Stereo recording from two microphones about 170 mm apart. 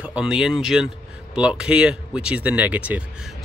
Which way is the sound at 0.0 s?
5° right (ahead or behind).